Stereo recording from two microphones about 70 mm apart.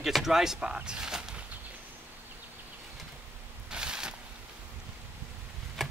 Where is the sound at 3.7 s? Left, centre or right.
Centre.